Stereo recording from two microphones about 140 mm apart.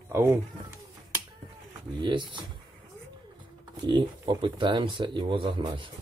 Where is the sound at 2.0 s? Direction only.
35° right (ahead or behind).